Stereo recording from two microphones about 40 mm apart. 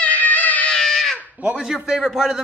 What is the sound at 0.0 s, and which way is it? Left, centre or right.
Music, left.